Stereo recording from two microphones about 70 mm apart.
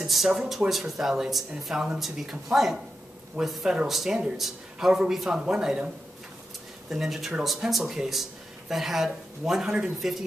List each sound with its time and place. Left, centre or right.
0.0 s speech: centre
6.9 s speech: centre